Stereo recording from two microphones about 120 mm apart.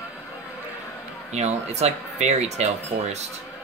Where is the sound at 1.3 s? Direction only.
65° right (ahead or behind).